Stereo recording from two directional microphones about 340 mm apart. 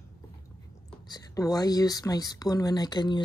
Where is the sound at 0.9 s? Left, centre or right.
Centre.